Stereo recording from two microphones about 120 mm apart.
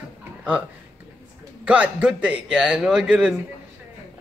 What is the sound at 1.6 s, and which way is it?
Speech, 10° right (ahead or behind).